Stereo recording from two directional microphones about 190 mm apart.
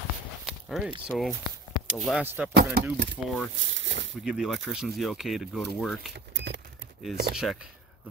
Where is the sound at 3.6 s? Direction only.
75° right (ahead or behind).